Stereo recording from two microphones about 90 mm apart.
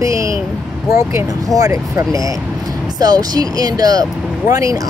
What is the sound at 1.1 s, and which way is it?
Speech, 40° right (ahead or behind).